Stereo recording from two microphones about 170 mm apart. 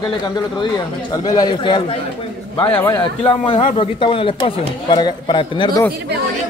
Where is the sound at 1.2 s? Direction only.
25° left (ahead or behind).